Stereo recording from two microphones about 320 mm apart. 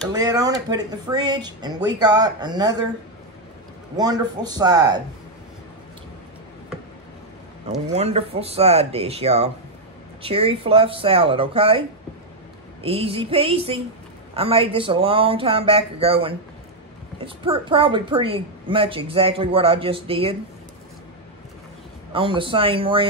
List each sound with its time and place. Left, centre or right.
0.1 s a woman's voice: centre
3.9 s a woman's voice: centre
7.9 s a woman's voice: centre
12.8 s a woman's voice: centre
22.1 s a woman's voice: centre